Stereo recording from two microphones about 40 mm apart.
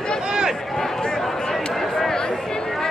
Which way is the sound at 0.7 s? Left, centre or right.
Centre.